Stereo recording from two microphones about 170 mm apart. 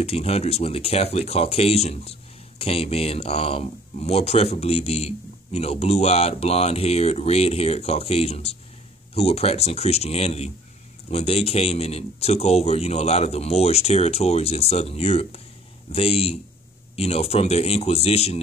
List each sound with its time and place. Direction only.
0.0 s speech: 40° left (ahead or behind)